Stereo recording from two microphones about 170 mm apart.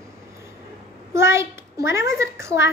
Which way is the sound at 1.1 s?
15° right (ahead or behind).